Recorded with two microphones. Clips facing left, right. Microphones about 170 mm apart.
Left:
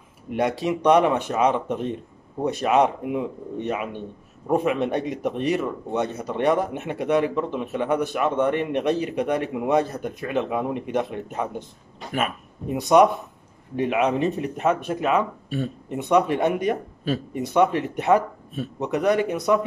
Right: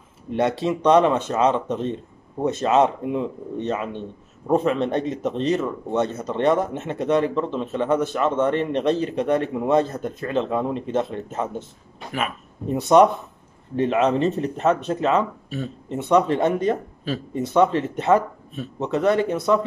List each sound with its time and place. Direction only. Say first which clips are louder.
0.4 s speech: right 1 dB; 15° left (ahead or behind)
12.9 s speech: right 1 dB; 10° left (ahead or behind)